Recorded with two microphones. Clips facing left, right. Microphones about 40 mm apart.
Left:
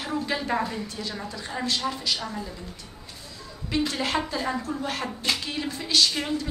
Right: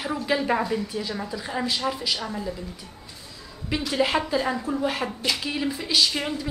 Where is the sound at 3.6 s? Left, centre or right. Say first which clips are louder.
Right 2 dB; centre.